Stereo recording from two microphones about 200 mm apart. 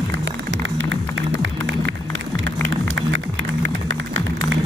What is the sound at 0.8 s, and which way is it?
Music, 70° right (ahead or behind).